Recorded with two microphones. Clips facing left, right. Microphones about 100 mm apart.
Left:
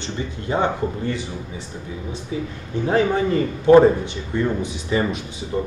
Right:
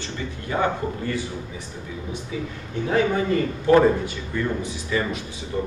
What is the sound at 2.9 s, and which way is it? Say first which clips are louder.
A man's voice: left 2 dB; 30° left (ahead or behind).